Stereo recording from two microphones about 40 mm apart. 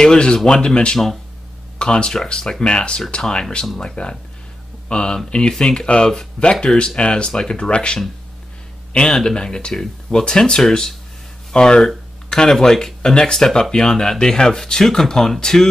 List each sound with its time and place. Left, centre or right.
0.0 s speech: centre
9.1 s speech: centre